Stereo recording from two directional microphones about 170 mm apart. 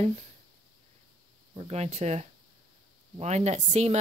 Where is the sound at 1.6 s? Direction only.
40° right (ahead or behind).